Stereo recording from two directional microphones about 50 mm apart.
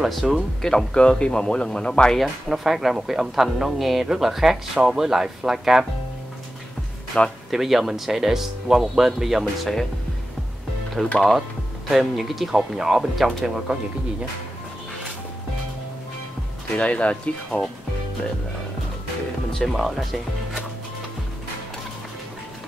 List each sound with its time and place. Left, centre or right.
0.0 s speech: centre
0.6 s speech: centre
2.1 s speech: centre
7.2 s speech: left
7.5 s speech: centre
11.0 s speech: centre
11.9 s speech: centre
16.7 s speech: left
19.5 s speech: centre